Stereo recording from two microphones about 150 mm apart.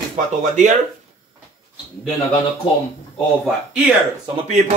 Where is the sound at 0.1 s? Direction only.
55° right (ahead or behind).